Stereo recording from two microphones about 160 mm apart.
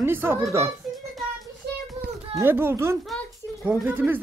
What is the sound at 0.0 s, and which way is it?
Speech, 15° right (ahead or behind).